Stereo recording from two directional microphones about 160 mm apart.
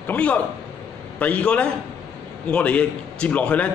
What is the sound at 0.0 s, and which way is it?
A man's voice, 10° left (ahead or behind).